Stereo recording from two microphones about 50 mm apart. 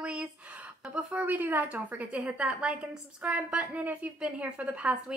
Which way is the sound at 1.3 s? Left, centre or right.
Right.